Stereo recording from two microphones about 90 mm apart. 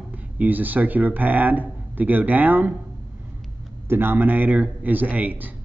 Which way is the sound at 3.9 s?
25° right (ahead or behind).